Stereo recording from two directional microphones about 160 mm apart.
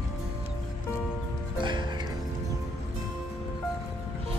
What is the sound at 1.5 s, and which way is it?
Music, 30° right (ahead or behind).